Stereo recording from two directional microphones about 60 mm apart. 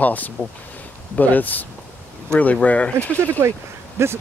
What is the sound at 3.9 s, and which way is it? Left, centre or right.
Speech, right.